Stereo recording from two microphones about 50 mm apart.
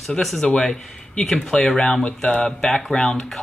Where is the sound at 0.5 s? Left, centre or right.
Centre.